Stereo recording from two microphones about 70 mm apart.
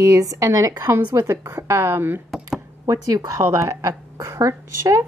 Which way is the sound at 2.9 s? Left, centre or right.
Right.